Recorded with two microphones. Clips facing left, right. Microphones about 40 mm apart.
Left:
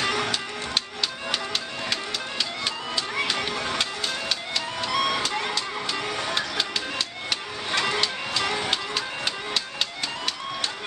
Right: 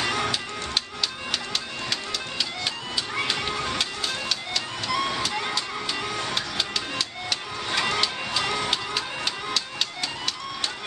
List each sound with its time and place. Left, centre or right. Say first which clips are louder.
0.0 s music: even; centre
3.2 s music: even; centre
4.9 s vehicle: left 2 dB; centre
5.2 s music: left 1 dB; centre
6.0 s music: left 1 dB; centre
7.7 s music: even; centre